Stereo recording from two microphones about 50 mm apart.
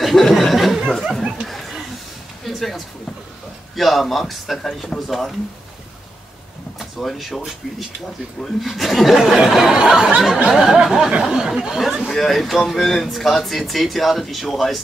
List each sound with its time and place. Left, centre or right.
0.0 s a sound: centre
3.7 s speech: centre
7.0 s speech: centre
8.4 s speech: centre
9.8 s a sound: centre
12.2 s speech: centre